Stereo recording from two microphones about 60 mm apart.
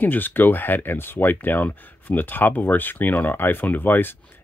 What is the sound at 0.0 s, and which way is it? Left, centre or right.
Speech, left.